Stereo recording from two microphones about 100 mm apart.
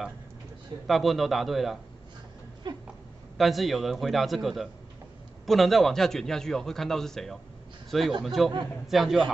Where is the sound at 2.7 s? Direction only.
45° right (ahead or behind).